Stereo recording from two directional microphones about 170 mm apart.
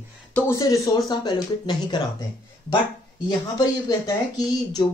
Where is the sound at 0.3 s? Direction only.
20° left (ahead or behind).